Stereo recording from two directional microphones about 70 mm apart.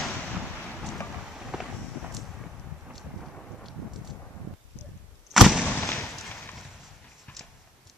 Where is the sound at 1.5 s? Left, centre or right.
Centre.